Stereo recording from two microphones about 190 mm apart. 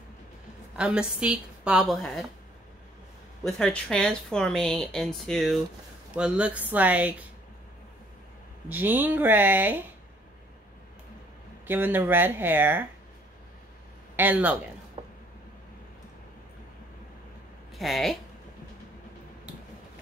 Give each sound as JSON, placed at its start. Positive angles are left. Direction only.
{"t": 0.7, "sound": "a woman's voice", "side_deg": -5}
{"t": 3.4, "sound": "a woman's voice", "side_deg": 5}
{"t": 8.6, "sound": "speech", "side_deg": -10}
{"t": 11.6, "sound": "speech", "side_deg": -10}
{"t": 14.1, "sound": "speech", "side_deg": -10}
{"t": 15.0, "sound": "creak", "side_deg": -30}
{"t": 17.7, "sound": "a woman's voice", "side_deg": 0}